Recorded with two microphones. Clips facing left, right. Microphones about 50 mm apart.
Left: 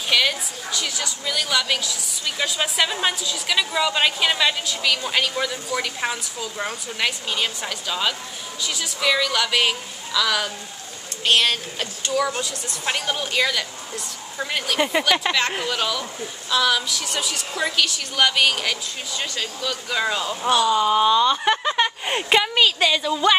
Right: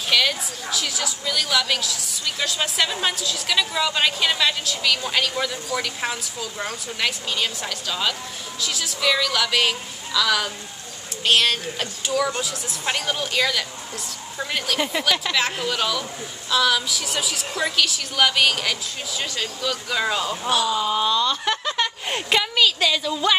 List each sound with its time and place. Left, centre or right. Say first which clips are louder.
0.1 s a woman's voice: even; centre
20.9 s speech: left 4 dB; centre